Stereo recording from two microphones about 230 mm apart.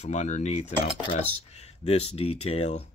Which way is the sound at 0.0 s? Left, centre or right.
Left.